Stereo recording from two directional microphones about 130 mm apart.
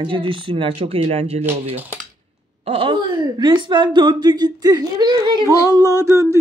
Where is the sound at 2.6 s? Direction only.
45° right (ahead or behind).